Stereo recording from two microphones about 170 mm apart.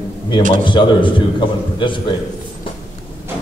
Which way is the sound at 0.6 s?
30° left (ahead or behind).